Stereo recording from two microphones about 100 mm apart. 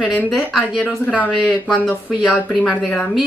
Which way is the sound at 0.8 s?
15° left (ahead or behind).